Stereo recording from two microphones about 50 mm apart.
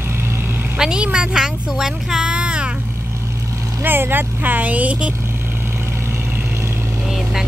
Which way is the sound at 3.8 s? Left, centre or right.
Right.